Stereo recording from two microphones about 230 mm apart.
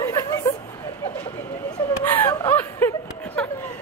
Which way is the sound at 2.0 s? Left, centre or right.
Centre.